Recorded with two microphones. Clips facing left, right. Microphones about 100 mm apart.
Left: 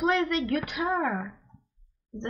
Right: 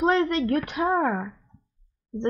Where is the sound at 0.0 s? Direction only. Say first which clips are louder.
Right 4 dB; 35° right (ahead or behind).